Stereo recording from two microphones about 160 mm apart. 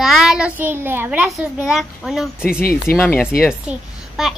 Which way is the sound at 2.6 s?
70° left (ahead or behind).